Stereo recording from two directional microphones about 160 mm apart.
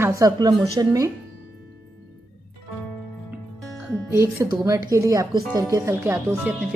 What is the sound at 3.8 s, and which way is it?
Speech, 15° right (ahead or behind).